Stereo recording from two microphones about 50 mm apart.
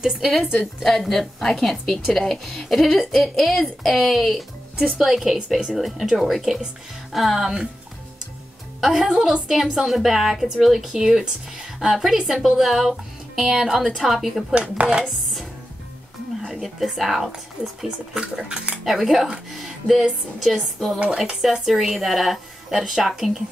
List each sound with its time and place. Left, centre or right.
0.0 s speech: centre
8.8 s a woman's voice: centre
12.2 s a woman's voice: centre
12.4 s speech: centre
14.5 s chopping: right
16.4 s speech: centre
17.6 s a woman's voice: centre
18.9 s speech: centre
21.6 s speech: centre